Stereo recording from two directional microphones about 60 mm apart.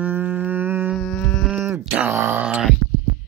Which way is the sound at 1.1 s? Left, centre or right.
Left.